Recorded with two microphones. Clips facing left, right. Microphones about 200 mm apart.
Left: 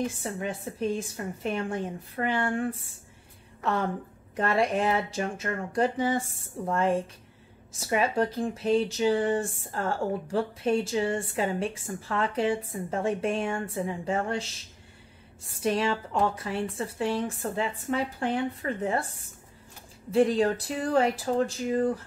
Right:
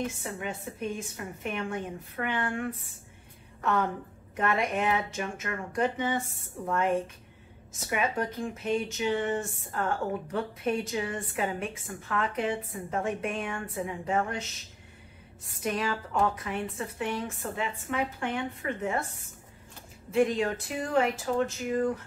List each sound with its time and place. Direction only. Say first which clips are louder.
0.0 s speech: left 3 dB; 35° left (ahead or behind)
4.4 s a woman's voice: left 3 dB; 30° left (ahead or behind)
20.1 s speech: left 3 dB; 35° left (ahead or behind)